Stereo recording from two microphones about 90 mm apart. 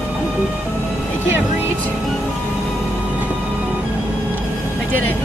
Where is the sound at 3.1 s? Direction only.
20° right (ahead or behind).